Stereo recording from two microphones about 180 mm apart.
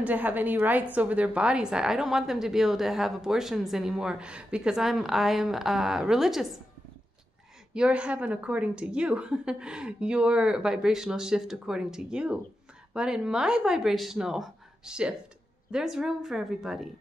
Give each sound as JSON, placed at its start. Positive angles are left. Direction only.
{"t": 0.0, "sound": "a woman's voice", "side_deg": -10}
{"t": 7.7, "sound": "a woman's voice", "side_deg": -5}